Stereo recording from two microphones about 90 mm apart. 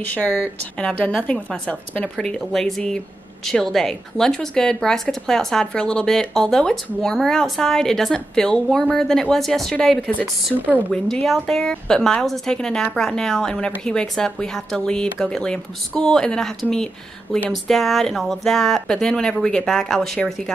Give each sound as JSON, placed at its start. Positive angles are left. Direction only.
{"t": 0.0, "sound": "a woman's voice", "side_deg": 20}